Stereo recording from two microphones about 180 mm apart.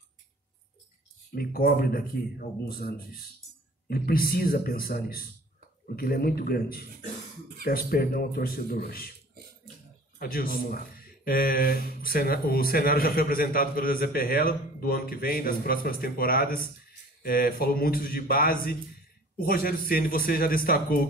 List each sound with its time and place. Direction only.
1.3 s speech: 55° left (ahead or behind)
10.1 s speech: 55° left (ahead or behind)